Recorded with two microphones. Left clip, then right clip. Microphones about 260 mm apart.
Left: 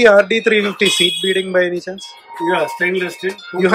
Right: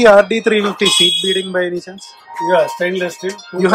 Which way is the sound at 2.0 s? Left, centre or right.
Centre.